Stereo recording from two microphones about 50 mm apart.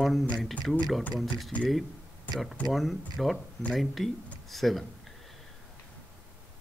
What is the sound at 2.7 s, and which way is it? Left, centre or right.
Speech, centre.